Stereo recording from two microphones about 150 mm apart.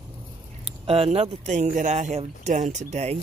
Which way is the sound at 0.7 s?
40° right (ahead or behind).